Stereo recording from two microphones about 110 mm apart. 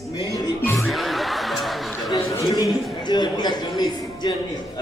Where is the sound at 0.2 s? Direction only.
40° left (ahead or behind).